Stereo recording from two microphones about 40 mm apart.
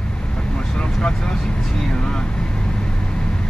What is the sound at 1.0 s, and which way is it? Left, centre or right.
Vehicle, centre.